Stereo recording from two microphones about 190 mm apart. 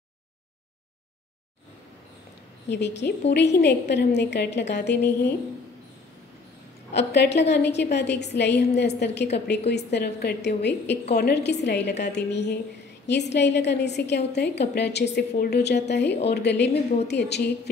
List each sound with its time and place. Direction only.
2.7 s a woman's voice: 65° left (ahead or behind)
6.9 s a woman's voice: 65° left (ahead or behind)